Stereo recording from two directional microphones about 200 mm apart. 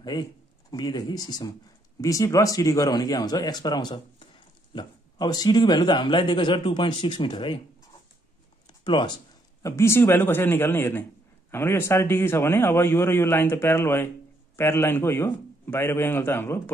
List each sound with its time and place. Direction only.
0.0 s a man's voice: 20° left (ahead or behind)
8.6 s a sound: 20° left (ahead or behind)
9.6 s a man's voice: 15° left (ahead or behind)